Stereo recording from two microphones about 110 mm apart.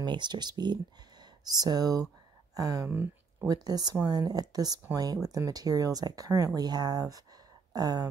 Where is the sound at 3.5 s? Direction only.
35° right (ahead or behind).